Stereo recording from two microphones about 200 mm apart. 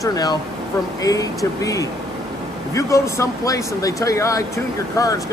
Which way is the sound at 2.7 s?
15° left (ahead or behind).